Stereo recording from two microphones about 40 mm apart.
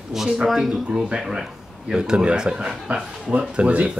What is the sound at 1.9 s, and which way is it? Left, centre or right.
A man's voice, centre.